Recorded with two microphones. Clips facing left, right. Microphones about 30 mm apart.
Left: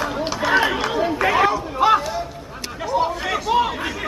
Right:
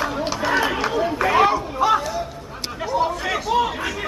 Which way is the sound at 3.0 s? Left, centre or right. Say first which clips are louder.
Left 1 dB; centre.